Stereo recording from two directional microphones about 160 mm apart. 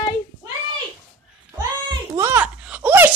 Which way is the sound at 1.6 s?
20° right (ahead or behind).